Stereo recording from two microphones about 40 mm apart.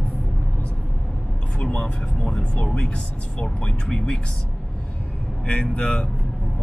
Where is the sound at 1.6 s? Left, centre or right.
Left.